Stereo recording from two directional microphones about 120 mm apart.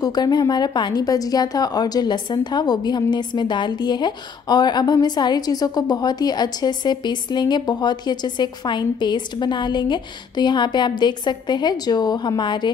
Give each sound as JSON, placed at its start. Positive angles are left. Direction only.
{"t": 0.0, "sound": "speech", "side_deg": 35}